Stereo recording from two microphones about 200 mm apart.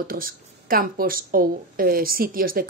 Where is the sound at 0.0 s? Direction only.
45° right (ahead or behind).